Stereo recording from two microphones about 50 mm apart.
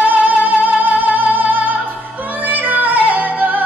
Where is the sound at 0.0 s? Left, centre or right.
Right.